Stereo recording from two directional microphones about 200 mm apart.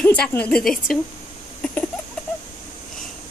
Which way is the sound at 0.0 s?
5° left (ahead or behind).